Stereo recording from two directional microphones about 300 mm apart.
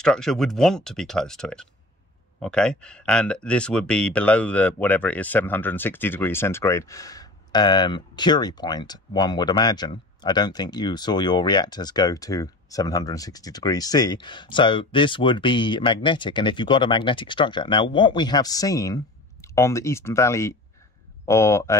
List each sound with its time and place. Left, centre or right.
0.0 s speech: centre